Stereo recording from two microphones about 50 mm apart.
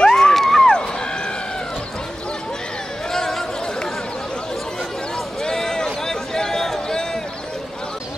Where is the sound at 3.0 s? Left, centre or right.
Centre.